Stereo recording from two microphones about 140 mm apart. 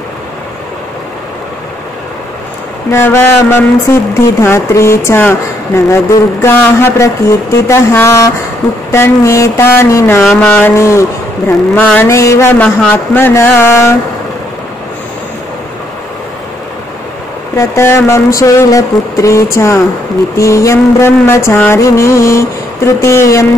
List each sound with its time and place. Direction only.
2.9 s speech: 15° left (ahead or behind)
17.6 s speech: 20° left (ahead or behind)